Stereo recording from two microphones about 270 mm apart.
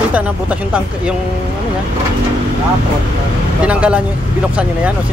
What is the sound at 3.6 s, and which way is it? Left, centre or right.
Speech, centre.